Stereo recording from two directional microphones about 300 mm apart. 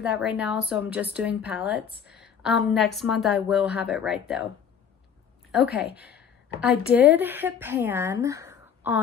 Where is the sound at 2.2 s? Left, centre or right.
Centre.